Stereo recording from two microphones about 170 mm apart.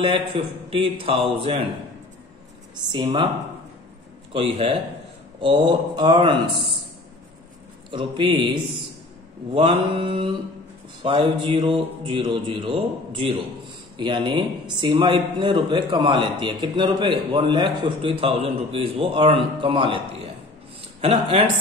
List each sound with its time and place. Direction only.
0.0 s a man's voice: 35° right (ahead or behind)
2.9 s a man's voice: 25° right (ahead or behind)
4.3 s a man's voice: 35° right (ahead or behind)
7.9 s a man's voice: 30° right (ahead or behind)